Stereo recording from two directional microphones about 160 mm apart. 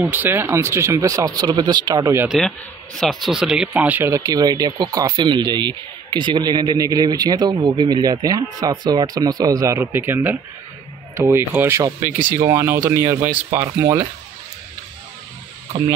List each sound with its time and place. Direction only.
0.0 s speech: 10° right (ahead or behind)
2.2 s a man's voice: centre (ahead or behind); by 14.0 s 20° right (ahead or behind)